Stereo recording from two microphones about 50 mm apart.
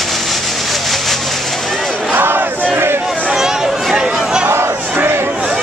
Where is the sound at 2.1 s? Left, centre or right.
Right.